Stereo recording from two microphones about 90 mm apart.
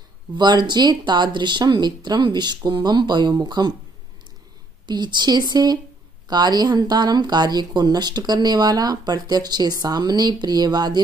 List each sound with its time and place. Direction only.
0.4 s speech: 55° right (ahead or behind)
4.8 s speech: 55° right (ahead or behind)